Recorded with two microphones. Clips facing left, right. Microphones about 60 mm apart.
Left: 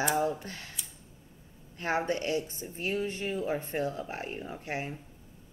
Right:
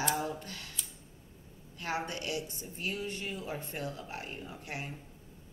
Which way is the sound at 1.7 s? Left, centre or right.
Left.